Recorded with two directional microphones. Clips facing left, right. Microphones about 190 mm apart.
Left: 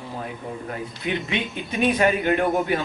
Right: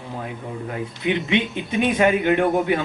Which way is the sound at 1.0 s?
20° right (ahead or behind).